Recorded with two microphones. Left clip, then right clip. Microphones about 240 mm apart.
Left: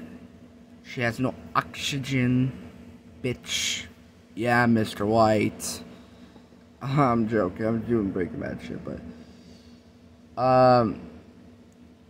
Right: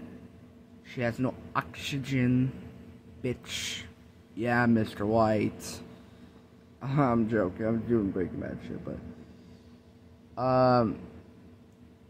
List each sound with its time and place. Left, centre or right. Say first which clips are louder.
0.8 s speech: left 4 dB; centre
10.3 s speech: left 6 dB; centre